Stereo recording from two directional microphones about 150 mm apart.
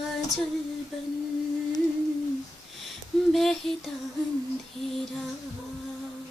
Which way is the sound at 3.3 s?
Centre (ahead or behind).